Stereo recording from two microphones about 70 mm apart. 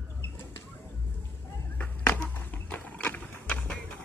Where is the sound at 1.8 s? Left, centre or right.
Left.